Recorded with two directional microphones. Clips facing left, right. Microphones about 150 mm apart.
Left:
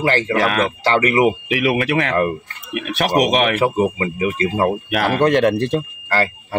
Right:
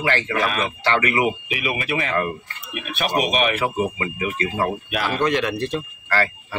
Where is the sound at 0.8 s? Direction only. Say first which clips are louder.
Left 5 dB; 35° left (ahead or behind).